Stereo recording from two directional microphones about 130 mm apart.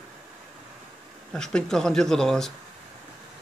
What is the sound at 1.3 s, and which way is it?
Speech, 5° left (ahead or behind).